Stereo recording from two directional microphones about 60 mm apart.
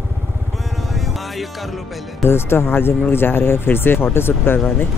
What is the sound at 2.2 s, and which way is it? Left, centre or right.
Speech, left.